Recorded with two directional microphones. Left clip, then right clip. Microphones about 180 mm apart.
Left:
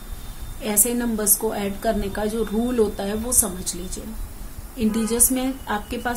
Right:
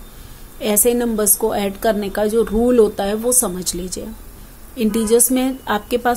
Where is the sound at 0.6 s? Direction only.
45° right (ahead or behind).